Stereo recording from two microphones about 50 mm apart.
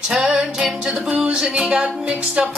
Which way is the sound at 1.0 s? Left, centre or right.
Right.